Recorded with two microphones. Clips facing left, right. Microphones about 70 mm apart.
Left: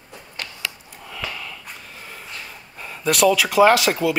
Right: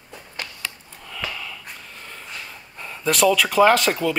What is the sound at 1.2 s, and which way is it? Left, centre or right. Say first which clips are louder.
Sniff: even; centre.